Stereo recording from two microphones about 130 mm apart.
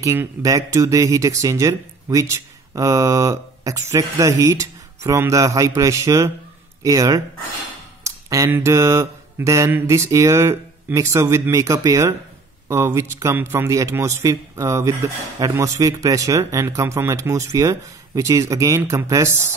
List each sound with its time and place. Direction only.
0.0 s mantra: 20° right (ahead or behind)